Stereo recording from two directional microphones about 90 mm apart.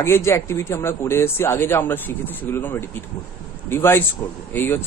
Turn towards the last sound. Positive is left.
turn(degrees=25)  # may be behind; listen again after turning